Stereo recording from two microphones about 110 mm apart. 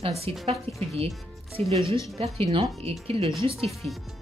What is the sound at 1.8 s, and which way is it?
Speech, 30° left (ahead or behind).